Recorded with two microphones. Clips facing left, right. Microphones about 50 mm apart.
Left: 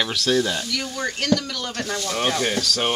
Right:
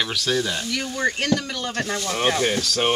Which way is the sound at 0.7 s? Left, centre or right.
Right.